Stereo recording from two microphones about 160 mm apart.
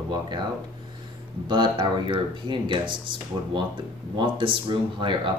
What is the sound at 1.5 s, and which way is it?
Speech, 30° right (ahead or behind).